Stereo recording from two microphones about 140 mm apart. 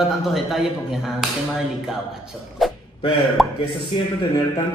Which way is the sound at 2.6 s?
Centre (ahead or behind).